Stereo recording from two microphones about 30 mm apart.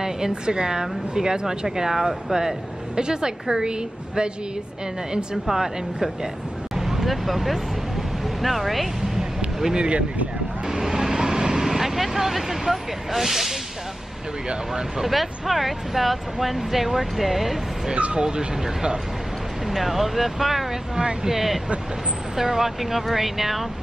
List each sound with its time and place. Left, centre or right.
0.3 s a woman's voice: right
1.9 s speech: centre
3.0 s a woman's voice: right
6.8 s a sound: centre
7.2 s speech: centre
9.8 s speech: right
10.7 s vehicle: centre
14.7 s speech: centre
17.9 s speech: right
18.2 s a woman's voice: right
19.7 s speech: centre
20.9 s a woman's voice: right
21.3 s speech: centre